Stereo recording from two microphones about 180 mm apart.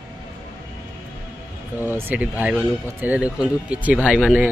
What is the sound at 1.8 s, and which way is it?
Speech, 10° right (ahead or behind).